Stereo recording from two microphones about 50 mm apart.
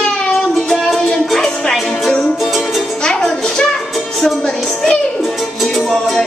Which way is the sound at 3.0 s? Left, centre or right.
Centre.